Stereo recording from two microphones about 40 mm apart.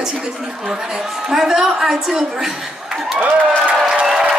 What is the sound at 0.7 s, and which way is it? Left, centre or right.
A woman's voice, centre.